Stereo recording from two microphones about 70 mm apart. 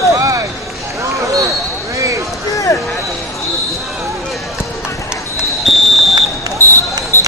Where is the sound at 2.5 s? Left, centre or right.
Left.